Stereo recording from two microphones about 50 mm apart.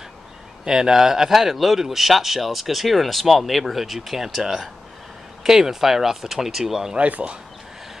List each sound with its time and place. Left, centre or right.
0.7 s speech: centre
7.0 s speech: right